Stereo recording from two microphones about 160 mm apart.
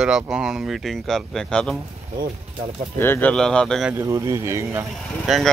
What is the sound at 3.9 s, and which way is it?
Speech, 15° right (ahead or behind).